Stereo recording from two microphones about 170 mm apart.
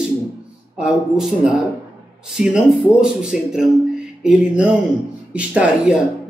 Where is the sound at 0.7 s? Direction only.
5° right (ahead or behind).